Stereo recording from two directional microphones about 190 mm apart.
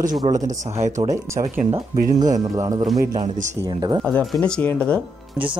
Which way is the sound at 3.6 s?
25° right (ahead or behind).